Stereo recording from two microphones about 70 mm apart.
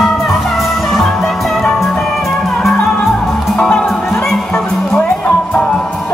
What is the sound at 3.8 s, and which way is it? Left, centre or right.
Music, centre.